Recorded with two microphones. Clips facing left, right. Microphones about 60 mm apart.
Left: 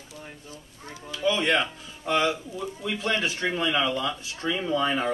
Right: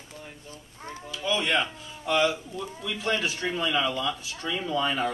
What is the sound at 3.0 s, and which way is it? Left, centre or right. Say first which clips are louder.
Speech: left 1 dB; left.